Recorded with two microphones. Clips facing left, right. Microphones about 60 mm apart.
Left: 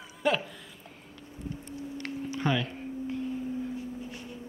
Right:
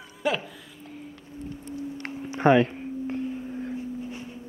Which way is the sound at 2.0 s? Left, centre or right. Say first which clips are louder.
Right 9 dB; right.